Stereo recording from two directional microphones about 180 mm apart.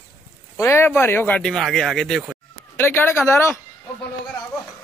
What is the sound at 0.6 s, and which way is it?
A man's voice, 15° left (ahead or behind).